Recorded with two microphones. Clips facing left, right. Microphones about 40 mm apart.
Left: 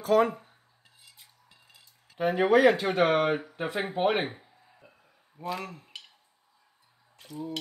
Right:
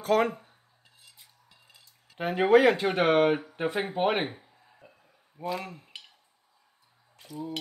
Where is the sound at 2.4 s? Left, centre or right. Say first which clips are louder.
Right 1 dB; right.